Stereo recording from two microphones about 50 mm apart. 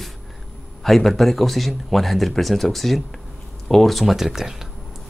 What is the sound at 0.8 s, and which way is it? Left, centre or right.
Speech, centre.